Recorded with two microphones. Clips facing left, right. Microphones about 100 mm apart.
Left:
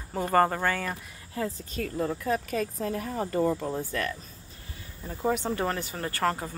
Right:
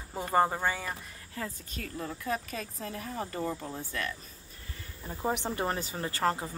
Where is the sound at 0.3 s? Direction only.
10° right (ahead or behind).